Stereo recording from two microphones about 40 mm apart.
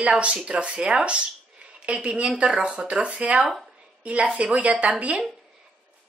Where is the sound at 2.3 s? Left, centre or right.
Right.